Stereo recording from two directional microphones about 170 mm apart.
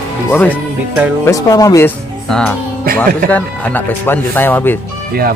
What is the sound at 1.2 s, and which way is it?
Speech, 20° left (ahead or behind).